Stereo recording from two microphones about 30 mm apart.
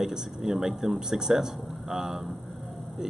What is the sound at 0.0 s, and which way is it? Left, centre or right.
Speech, centre.